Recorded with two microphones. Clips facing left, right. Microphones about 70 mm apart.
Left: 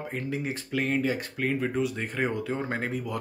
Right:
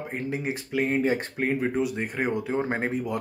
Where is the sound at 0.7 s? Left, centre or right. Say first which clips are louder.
Right 3 dB; centre.